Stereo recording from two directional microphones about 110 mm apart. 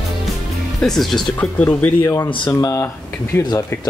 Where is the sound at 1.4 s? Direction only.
15° left (ahead or behind).